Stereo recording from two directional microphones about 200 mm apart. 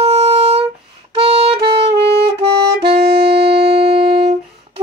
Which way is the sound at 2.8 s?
55° right (ahead or behind).